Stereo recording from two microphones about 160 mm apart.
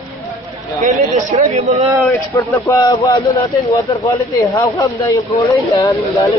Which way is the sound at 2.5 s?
20° left (ahead or behind).